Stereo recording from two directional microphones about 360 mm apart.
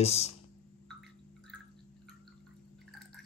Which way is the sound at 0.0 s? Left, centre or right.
Centre.